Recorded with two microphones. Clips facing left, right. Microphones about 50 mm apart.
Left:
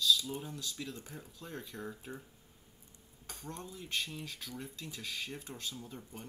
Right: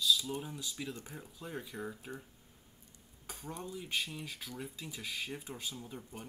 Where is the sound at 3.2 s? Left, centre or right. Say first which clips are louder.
Right 2 dB; centre.